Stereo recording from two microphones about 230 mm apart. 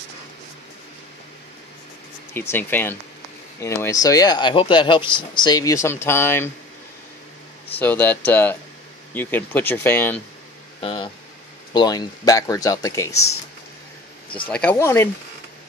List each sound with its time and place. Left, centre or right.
2.5 s speech: centre
7.8 s speech: centre
10.8 s a sound: left
11.7 s speech: centre
14.3 s speech: centre